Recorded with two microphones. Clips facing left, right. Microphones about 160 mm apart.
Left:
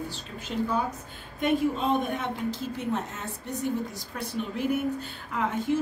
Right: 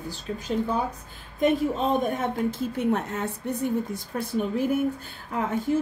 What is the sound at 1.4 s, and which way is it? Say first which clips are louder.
A woman's voice: right 3 dB; 40° right (ahead or behind).